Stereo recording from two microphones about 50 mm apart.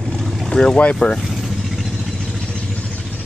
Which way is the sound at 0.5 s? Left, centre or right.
Centre.